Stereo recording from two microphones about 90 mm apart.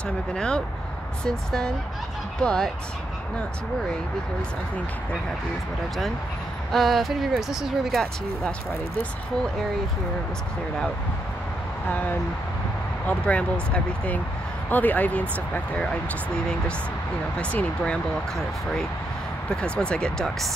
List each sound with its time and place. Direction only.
0.3 s speech: 10° left (ahead or behind)
6.7 s speech: centre (ahead or behind)
11.9 s speech: 20° left (ahead or behind)
17.4 s speech: 15° left (ahead or behind)
19.5 s speech: 10° left (ahead or behind)